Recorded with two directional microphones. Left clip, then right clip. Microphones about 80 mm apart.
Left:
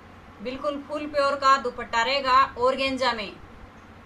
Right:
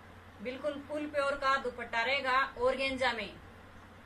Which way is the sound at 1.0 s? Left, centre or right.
Centre.